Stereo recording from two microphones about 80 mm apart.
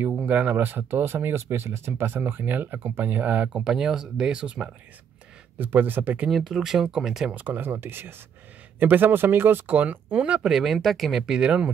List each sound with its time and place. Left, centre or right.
0.0 s speech: right
3.6 s speech: centre
5.6 s speech: right
6.3 s speech: centre
7.3 s speech: right
10.4 s speech: centre